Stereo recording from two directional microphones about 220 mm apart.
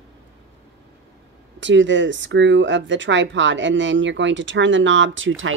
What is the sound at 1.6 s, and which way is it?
Speech, 55° right (ahead or behind).